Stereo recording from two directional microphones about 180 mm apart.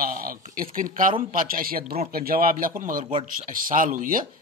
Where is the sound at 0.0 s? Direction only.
50° right (ahead or behind).